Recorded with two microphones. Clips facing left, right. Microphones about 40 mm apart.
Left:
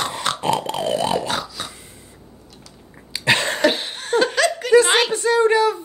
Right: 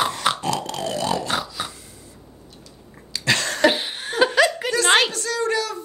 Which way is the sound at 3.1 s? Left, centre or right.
Left.